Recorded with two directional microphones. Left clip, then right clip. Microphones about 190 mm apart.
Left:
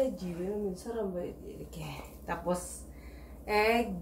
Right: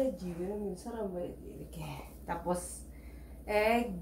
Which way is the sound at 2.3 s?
10° right (ahead or behind).